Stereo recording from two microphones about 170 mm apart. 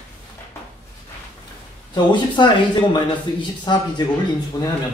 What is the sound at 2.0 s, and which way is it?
Speech, 25° left (ahead or behind).